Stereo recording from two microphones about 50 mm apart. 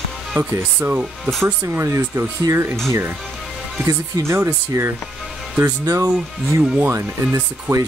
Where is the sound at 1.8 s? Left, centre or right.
Right.